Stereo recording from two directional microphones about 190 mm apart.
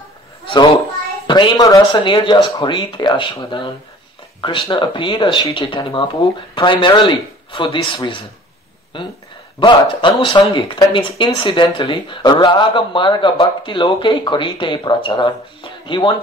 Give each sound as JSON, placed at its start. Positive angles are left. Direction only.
{"t": 1.2, "sound": "speech", "side_deg": 25}